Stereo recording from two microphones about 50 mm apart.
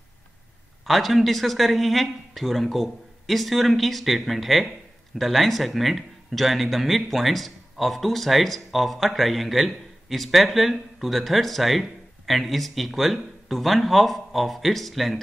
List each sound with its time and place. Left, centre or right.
0.8 s speech: centre